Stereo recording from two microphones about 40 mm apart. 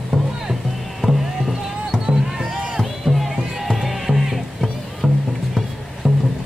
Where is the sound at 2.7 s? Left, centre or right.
Centre.